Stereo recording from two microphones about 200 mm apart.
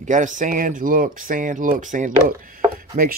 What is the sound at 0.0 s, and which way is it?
Rub, 40° right (ahead or behind).